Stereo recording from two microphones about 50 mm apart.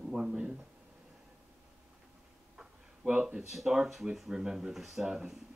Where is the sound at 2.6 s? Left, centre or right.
Centre.